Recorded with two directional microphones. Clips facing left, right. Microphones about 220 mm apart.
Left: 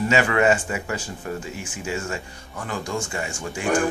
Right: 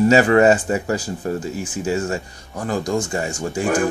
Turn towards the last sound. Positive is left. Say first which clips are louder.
# right 7 dB
turn(degrees=-40)  # may be behind; listen again after turning